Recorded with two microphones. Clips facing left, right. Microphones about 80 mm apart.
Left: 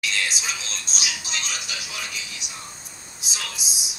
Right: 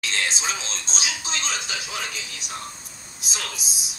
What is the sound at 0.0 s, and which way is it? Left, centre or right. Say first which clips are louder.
A woman's voice: right 1 dB; right.